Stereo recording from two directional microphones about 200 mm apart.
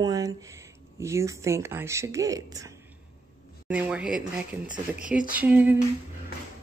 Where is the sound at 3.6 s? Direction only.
5° right (ahead or behind).